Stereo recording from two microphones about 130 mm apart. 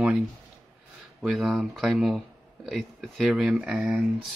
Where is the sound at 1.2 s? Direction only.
5° right (ahead or behind).